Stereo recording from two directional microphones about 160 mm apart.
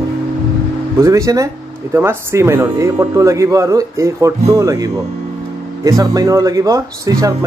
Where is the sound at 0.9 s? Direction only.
20° right (ahead or behind).